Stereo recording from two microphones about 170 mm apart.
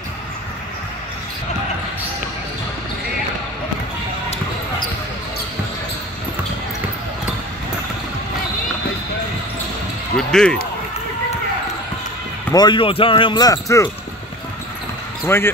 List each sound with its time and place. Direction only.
10.1 s basketball bounce: 5° left (ahead or behind)
12.5 s speech: 25° left (ahead or behind)
15.2 s speech: 15° left (ahead or behind)